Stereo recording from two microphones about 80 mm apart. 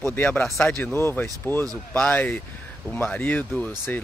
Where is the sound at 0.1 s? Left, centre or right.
Left.